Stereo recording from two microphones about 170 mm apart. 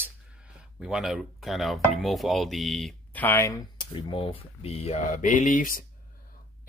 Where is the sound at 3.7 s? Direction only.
30° left (ahead or behind).